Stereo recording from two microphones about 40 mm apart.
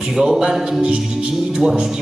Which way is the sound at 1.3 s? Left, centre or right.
Centre.